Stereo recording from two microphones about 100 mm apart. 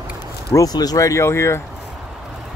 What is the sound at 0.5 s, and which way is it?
Speech, 40° left (ahead or behind).